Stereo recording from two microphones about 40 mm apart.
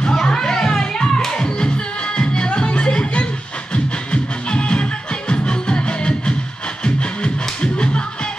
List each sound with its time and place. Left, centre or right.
0.0 s music: centre
7.6 s music: left